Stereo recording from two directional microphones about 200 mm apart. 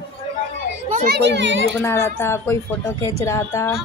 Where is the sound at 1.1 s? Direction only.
60° right (ahead or behind).